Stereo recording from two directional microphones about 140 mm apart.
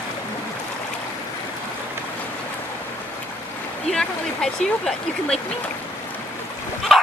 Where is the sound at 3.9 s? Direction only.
5° left (ahead or behind).